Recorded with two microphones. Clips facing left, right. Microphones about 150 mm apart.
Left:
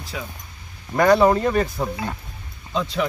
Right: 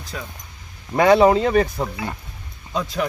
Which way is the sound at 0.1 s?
5° left (ahead or behind).